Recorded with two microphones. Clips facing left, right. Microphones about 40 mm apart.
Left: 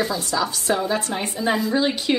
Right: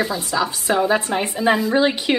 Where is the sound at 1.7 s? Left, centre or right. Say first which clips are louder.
Right 3 dB; right.